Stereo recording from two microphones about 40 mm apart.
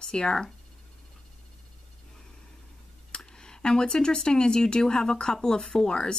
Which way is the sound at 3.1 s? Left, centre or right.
Left.